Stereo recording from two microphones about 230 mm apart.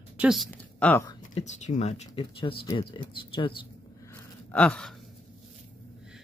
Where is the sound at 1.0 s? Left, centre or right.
Left.